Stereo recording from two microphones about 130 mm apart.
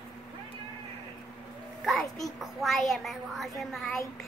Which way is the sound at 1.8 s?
Centre (ahead or behind).